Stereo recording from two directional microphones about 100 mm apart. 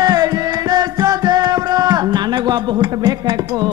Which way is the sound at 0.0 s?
40° right (ahead or behind).